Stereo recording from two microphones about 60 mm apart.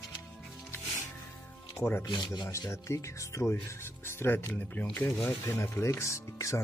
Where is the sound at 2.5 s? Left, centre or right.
Left.